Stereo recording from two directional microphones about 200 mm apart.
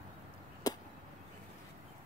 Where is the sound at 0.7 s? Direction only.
20° left (ahead or behind).